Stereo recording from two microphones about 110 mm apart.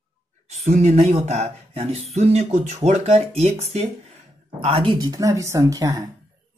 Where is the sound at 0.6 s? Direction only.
75° right (ahead or behind).